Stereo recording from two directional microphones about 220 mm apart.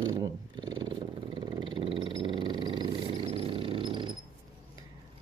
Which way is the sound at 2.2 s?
20° right (ahead or behind).